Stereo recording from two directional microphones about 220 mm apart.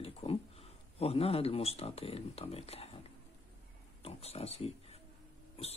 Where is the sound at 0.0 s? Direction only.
25° left (ahead or behind).